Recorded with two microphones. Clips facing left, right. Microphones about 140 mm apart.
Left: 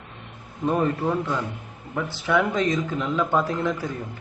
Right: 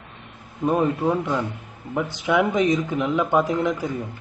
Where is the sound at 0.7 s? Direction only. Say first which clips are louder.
Right 2 dB; 15° right (ahead or behind).